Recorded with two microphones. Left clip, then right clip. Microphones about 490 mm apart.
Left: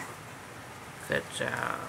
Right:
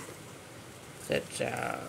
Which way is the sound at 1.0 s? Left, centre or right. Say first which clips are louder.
Left 1 dB; right.